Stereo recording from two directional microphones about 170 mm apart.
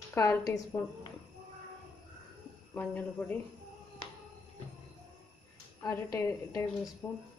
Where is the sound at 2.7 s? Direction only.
10° left (ahead or behind).